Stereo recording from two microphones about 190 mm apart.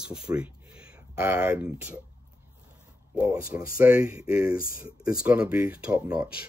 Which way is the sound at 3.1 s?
5° right (ahead or behind).